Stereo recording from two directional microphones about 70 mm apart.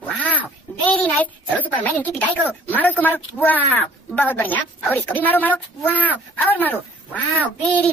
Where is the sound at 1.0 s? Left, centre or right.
Left.